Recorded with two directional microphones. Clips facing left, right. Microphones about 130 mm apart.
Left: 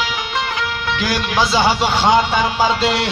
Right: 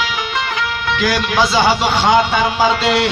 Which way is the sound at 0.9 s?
35° left (ahead or behind).